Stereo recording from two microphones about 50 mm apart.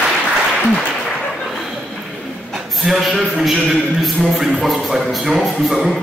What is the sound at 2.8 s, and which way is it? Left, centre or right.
A man's voice, centre.